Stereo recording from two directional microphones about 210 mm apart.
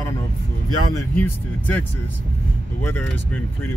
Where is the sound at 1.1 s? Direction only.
10° left (ahead or behind).